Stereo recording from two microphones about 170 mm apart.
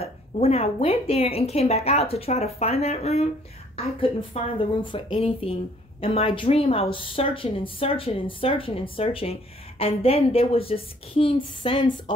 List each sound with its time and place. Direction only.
0.0 s a woman's voice: 35° left (ahead or behind)